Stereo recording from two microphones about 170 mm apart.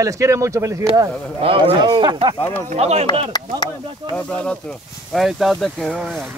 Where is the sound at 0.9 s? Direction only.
30° right (ahead or behind).